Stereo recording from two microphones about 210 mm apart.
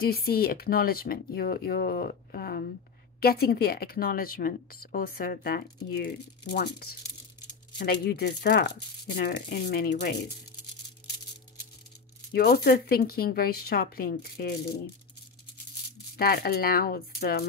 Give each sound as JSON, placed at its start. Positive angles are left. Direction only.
{"t": 0.0, "sound": "speech", "side_deg": 45}
{"t": 12.3, "sound": "speech", "side_deg": 50}
{"t": 16.2, "sound": "speech", "side_deg": 45}